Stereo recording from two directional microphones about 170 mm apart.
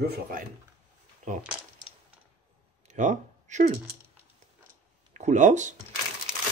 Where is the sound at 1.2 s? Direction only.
45° right (ahead or behind).